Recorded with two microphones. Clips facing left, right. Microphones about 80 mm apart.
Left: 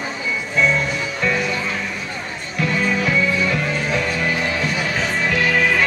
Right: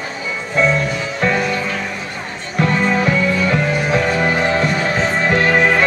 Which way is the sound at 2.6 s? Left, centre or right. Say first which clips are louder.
Right 4 dB; right.